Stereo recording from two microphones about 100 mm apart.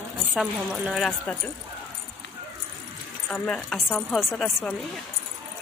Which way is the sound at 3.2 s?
10° left (ahead or behind).